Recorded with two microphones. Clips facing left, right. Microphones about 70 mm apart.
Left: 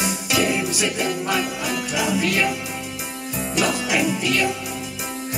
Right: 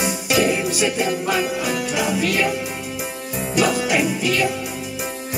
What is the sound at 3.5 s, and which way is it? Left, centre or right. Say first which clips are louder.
Music: right 4 dB; centre.